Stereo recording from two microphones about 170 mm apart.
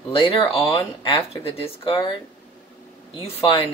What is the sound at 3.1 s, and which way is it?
Speech, 35° left (ahead or behind).